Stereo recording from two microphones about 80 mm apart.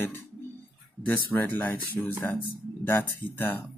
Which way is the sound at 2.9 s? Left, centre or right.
Left.